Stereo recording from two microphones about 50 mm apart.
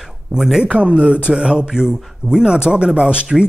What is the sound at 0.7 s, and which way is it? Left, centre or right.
Speech, right.